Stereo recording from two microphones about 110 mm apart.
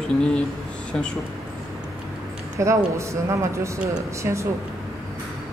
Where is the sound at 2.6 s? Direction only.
25° right (ahead or behind).